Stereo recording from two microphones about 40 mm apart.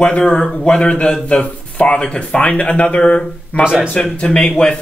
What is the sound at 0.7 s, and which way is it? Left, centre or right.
Speech, left.